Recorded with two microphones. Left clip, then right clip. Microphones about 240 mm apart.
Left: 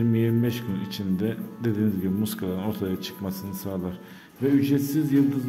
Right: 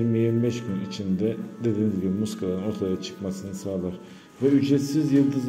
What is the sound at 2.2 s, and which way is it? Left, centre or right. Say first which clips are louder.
A man's voice: right 2 dB; centre.